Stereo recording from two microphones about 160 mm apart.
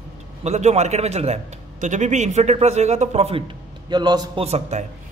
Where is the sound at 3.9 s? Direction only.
25° right (ahead or behind).